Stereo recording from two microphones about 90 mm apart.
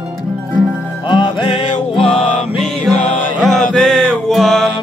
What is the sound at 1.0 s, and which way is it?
Music, 60° left (ahead or behind).